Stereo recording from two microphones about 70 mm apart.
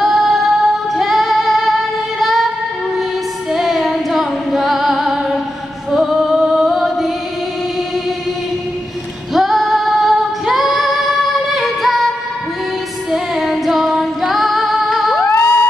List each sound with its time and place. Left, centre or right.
0.0 s female singing: centre
3.5 s music: centre
9.3 s female singing: centre
13.1 s female singing: centre
15.1 s music: left